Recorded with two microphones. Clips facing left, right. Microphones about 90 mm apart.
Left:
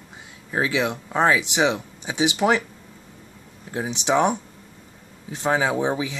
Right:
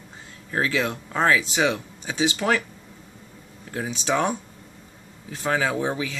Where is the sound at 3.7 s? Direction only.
20° left (ahead or behind).